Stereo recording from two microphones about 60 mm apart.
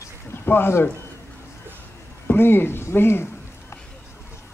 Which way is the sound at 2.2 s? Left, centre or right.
Left.